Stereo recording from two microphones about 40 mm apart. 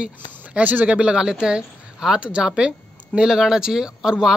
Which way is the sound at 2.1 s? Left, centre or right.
Right.